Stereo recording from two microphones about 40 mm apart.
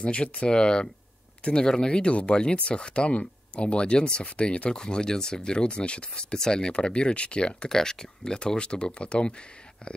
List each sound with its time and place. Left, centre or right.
0.0 s speech: left
7.7 s speech: centre